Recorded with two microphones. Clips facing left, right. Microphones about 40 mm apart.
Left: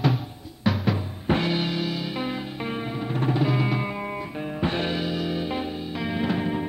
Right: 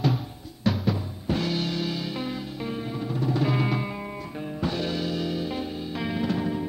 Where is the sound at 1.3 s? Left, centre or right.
Left.